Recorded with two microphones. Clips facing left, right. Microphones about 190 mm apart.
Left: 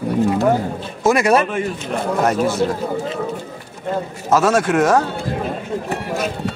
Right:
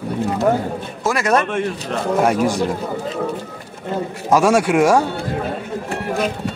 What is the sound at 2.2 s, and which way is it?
Speech, 15° right (ahead or behind).